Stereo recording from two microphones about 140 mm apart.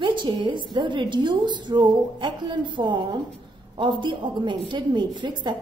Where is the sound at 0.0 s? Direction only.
35° right (ahead or behind).